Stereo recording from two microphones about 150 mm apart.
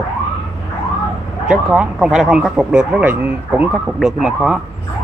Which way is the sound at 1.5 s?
5° right (ahead or behind).